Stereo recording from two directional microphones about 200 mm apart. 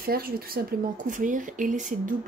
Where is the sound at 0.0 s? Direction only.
45° right (ahead or behind).